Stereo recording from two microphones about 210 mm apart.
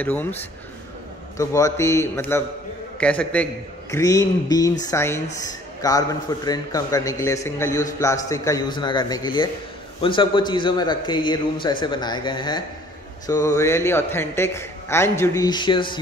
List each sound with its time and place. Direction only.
0.0 s a man's voice: 10° left (ahead or behind)